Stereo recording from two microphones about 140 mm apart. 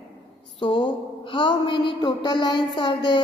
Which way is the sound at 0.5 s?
35° left (ahead or behind).